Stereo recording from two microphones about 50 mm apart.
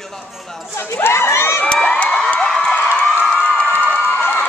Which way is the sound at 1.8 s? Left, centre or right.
Left.